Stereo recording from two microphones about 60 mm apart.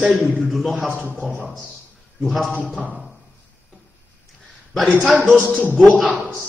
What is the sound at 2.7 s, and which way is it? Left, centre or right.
Speech, centre.